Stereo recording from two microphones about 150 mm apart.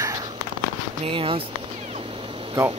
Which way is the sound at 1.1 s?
35° right (ahead or behind).